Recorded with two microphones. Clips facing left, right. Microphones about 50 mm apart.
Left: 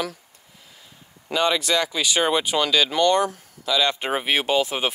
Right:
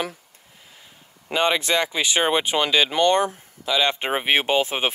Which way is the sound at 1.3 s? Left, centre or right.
Right.